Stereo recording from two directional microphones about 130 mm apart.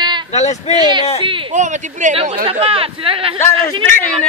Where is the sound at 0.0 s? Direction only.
35° right (ahead or behind).